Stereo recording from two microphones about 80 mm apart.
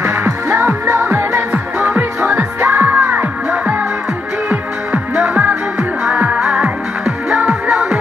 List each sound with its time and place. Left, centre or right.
0.0 s music: right
1.5 s music: centre
5.1 s music: centre